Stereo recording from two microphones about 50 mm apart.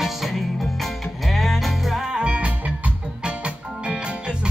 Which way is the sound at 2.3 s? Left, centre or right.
Right.